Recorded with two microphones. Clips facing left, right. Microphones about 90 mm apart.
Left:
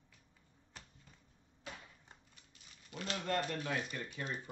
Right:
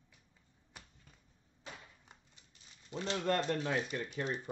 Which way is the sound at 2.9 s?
25° right (ahead or behind).